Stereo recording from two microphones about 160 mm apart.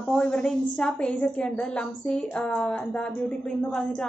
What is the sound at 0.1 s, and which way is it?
A woman's voice, 5° left (ahead or behind).